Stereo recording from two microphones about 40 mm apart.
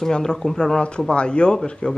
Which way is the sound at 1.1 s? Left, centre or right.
Left.